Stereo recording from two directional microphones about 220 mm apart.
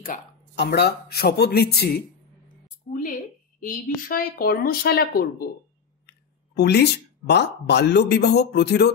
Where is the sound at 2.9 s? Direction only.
35° left (ahead or behind).